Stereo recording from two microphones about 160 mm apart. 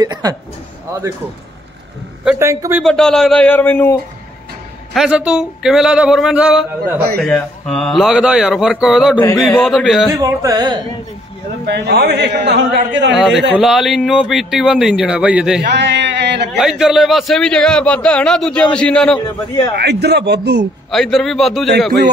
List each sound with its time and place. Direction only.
0.0 s speech: 25° right (ahead or behind)
2.3 s a man's voice: 20° right (ahead or behind)
2.8 s a man's voice: 5° left (ahead or behind)
4.9 s a man's voice: 5° right (ahead or behind)
7.0 s a man's voice: 75° right (ahead or behind)
7.2 s a man's voice: 5° left (ahead or behind)
10.1 s speech: 20° right (ahead or behind)
11.6 s speech: 90° right
13.1 s a man's voice: 5° right (ahead or behind)
15.6 s a sound: 90° right
16.5 s a man's voice: 5° right (ahead or behind)
19.8 s speech: 90° right
20.9 s a man's voice: centre (ahead or behind)